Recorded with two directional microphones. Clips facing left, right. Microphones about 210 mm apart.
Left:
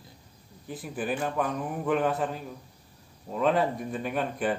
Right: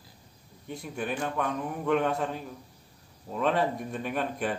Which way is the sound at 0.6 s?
Centre (ahead or behind).